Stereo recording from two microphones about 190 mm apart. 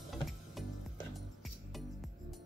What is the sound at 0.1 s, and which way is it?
Music, centre (ahead or behind).